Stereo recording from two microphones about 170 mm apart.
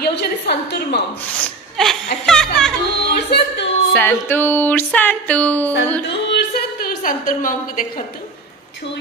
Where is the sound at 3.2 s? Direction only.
75° left (ahead or behind).